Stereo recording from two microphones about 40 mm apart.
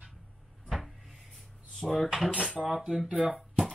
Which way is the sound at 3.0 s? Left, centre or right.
Right.